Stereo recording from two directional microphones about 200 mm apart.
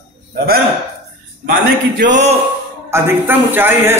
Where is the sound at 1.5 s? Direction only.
40° right (ahead or behind).